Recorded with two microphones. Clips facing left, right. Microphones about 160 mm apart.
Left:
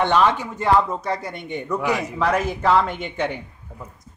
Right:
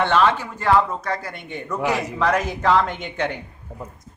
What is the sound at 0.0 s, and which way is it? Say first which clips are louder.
A man's voice: even; 15° left (ahead or behind).